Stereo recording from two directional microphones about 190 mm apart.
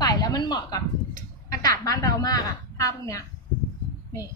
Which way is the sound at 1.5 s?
20° left (ahead or behind).